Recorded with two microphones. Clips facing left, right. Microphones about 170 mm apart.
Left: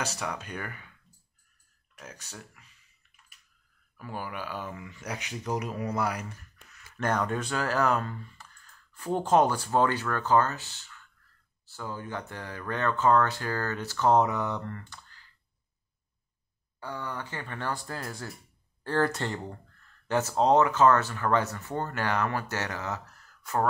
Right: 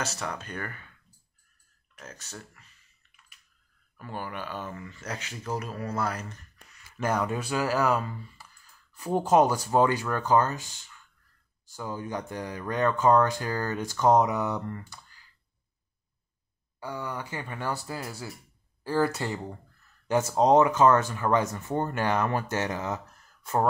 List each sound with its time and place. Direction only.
0.0 s speech: 10° left (ahead or behind)
2.0 s speech: 10° left (ahead or behind)
3.9 s speech: 10° left (ahead or behind); by 15.2 s 10° right (ahead or behind)
16.8 s speech: 10° right (ahead or behind)